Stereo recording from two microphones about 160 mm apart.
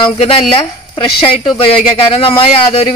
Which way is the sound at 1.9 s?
35° left (ahead or behind).